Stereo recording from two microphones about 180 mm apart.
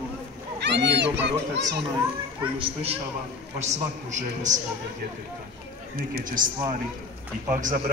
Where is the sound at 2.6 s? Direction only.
35° right (ahead or behind).